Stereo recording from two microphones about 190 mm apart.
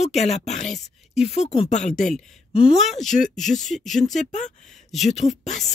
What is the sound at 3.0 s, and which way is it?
Speech, 40° left (ahead or behind).